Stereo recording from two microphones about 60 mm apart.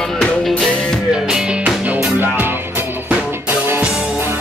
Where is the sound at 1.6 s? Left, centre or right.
Right.